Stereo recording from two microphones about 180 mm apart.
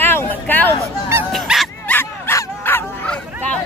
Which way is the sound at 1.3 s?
Centre (ahead or behind).